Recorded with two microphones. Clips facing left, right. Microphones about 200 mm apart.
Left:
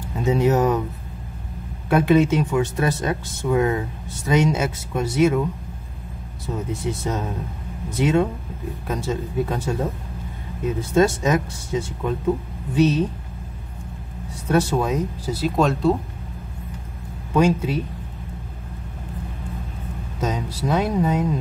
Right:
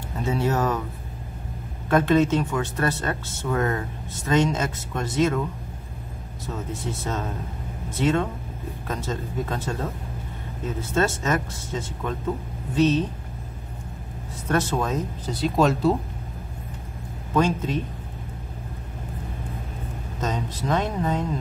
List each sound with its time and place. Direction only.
0.2 s speech: 15° left (ahead or behind)
1.9 s speech: 10° left (ahead or behind)
14.5 s speech: 10° left (ahead or behind)
17.3 s speech: 10° left (ahead or behind)
20.2 s speech: 10° left (ahead or behind)